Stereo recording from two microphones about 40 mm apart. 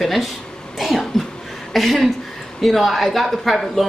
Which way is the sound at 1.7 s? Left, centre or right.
Centre.